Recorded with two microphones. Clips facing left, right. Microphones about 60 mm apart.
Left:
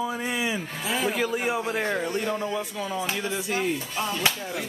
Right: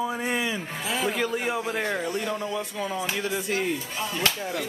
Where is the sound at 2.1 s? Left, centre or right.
Centre.